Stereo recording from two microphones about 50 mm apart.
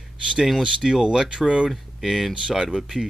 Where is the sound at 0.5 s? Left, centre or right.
Centre.